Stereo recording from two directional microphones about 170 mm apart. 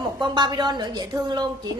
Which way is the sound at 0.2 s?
25° right (ahead or behind).